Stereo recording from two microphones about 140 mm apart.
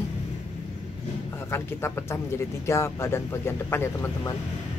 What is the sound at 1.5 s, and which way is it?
Speech, 15° left (ahead or behind).